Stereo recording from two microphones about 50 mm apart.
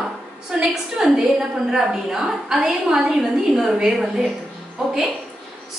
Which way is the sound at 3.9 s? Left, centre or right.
Centre.